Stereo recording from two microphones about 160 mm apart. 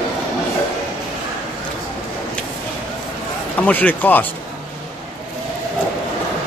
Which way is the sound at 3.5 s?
10° left (ahead or behind).